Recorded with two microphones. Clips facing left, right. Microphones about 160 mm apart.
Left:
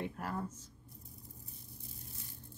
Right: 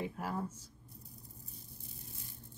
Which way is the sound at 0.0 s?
5° right (ahead or behind).